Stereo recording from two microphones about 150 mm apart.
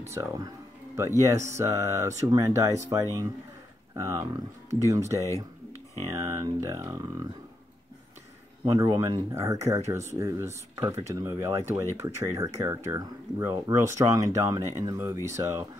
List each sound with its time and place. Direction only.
0.1 s speech: 20° right (ahead or behind)
8.6 s speech: 25° right (ahead or behind)